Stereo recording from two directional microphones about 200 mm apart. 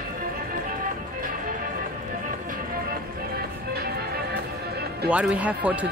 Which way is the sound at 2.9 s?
50° right (ahead or behind).